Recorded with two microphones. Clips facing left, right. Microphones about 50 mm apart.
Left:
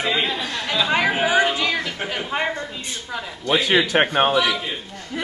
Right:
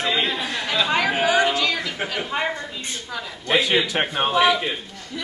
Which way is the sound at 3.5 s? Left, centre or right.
Left.